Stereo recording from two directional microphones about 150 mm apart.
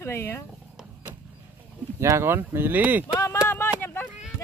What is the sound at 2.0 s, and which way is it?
Speech, 15° right (ahead or behind).